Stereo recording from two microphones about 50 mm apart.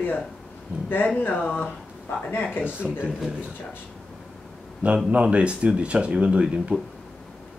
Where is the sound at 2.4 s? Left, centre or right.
Left.